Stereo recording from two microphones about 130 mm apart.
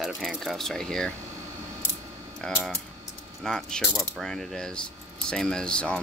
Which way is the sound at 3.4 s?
5° left (ahead or behind).